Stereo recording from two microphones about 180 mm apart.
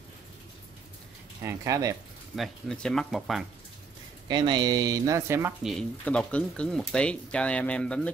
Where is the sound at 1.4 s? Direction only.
20° right (ahead or behind).